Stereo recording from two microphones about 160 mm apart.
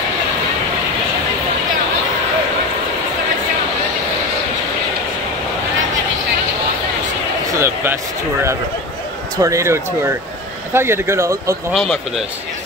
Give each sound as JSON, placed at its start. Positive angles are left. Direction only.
{"t": 7.5, "sound": "a sound", "side_deg": -15}
{"t": 9.4, "sound": "speech", "side_deg": -20}
{"t": 11.7, "sound": "speech", "side_deg": 5}